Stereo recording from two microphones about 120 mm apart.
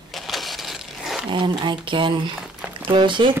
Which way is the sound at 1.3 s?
45° right (ahead or behind).